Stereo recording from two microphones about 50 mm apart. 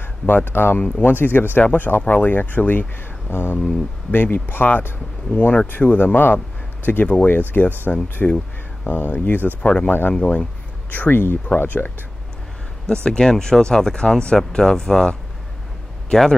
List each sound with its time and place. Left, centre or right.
0.0 s speech: left
0.7 s speech: left
1.0 s speech: left
3.3 s speech: left
5.3 s speech: left
9.6 s speech: centre
9.8 s speech: left
12.8 s speech: centre